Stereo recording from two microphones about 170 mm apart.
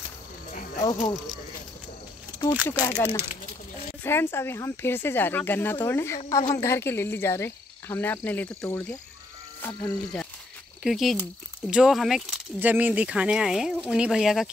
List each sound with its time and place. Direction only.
0.5 s a sound: 50° left (ahead or behind)
2.5 s speech: 10° right (ahead or behind)
2.8 s speech: 25° left (ahead or behind)
4.0 s speech: 15° left (ahead or behind)
10.8 s speech: centre (ahead or behind)